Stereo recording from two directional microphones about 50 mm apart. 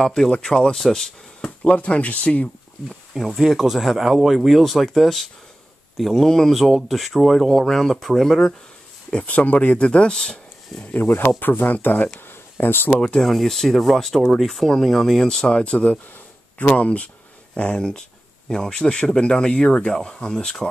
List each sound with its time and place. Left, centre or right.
0.0 s speech: centre
1.6 s speech: left
3.2 s speech: centre
9.3 s speech: left
9.8 s speech: centre
10.9 s speech: left
12.3 s a sound: left
13.2 s speech: centre
16.5 s speech: left